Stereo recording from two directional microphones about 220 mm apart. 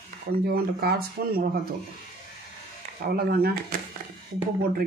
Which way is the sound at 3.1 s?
45° right (ahead or behind).